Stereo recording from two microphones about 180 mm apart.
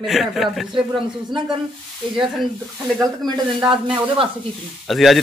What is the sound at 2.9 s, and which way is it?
Speech, 20° right (ahead or behind).